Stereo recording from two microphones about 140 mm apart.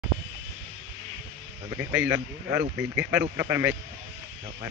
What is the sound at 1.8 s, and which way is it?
Speech, 15° right (ahead or behind).